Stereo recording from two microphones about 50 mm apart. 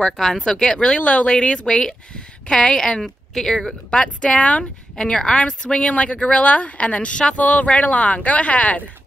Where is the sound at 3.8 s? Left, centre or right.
Left.